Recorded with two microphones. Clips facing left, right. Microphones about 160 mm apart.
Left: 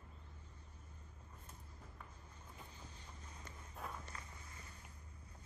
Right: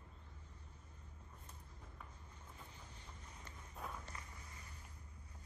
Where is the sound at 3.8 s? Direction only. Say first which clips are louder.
Even; centre (ahead or behind).